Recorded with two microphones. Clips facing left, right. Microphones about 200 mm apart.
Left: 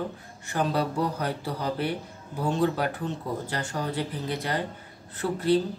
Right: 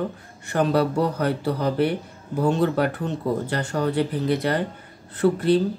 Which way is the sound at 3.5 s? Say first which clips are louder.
Right 7 dB; 60° right (ahead or behind).